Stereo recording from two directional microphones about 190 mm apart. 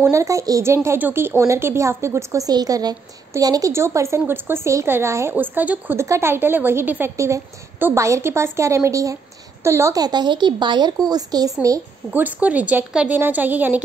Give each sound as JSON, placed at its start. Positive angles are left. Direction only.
{"t": 0.0, "sound": "a woman's voice", "side_deg": -15}